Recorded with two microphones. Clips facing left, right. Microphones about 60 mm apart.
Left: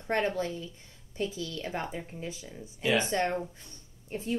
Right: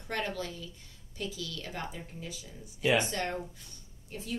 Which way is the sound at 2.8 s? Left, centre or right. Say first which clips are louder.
Even; right.